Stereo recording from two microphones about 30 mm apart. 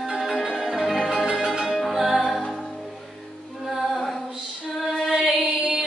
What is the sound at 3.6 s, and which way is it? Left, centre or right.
Music, centre.